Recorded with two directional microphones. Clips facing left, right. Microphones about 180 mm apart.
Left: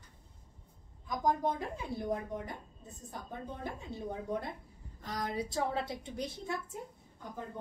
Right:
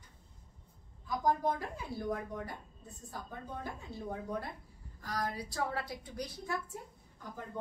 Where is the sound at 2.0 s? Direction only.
20° left (ahead or behind).